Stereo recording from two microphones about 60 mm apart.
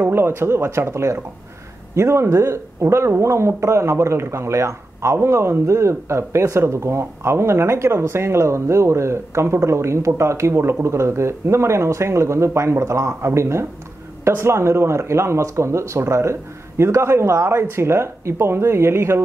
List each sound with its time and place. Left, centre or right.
0.1 s speech: right